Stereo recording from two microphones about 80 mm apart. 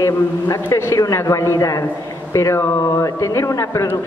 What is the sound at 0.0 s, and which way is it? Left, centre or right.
A woman's voice, left.